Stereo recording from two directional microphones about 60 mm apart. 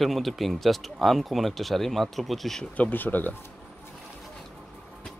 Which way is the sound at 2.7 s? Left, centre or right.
Left.